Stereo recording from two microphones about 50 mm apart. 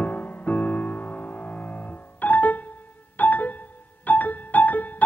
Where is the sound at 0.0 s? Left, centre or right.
Left.